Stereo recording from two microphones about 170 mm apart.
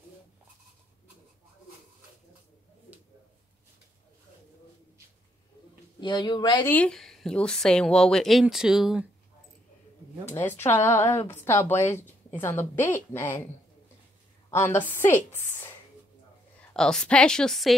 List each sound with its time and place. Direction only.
5.9 s speech: 30° left (ahead or behind)
6.6 s a woman's voice: 10° left (ahead or behind)
10.3 s a woman's voice: 15° left (ahead or behind)
14.5 s a woman's voice: 15° left (ahead or behind)
16.7 s a woman's voice: 5° left (ahead or behind)